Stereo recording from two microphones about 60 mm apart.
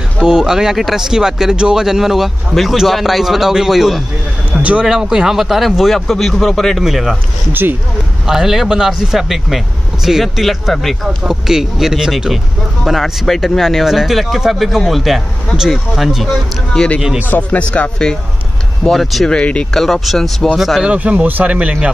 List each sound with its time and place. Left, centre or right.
0.2 s speech: centre
4.5 s speech: right
4.8 s speech: centre
8.3 s speech: centre
16.7 s speech: centre
18.9 s speech: centre
19.3 s speech: centre
19.7 s speech: centre
20.8 s speech: centre